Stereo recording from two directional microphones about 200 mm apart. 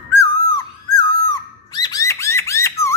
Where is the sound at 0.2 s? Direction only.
20° left (ahead or behind).